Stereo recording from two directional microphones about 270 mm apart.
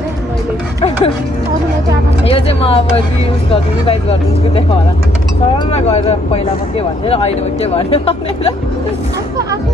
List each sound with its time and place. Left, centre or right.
2.2 s speech: left
3.8 s speech: left
5.7 s speech: left